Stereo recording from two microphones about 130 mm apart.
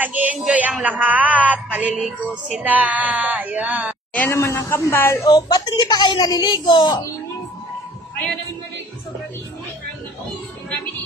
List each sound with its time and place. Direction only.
0.0 s speech: 10° right (ahead or behind)
4.1 s a woman's voice: 15° left (ahead or behind); by 7.0 s 35° left (ahead or behind)